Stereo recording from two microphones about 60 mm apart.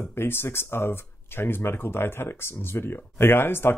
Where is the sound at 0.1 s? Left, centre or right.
Left.